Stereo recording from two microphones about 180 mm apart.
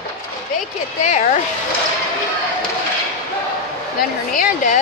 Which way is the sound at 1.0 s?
40° left (ahead or behind).